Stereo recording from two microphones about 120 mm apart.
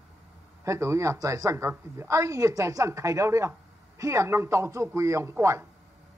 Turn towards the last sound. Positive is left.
turn(degrees=-20)  # may be behind; listen again after turning